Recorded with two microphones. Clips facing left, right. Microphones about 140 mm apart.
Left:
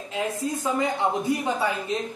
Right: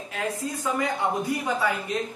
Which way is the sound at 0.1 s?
25° left (ahead or behind).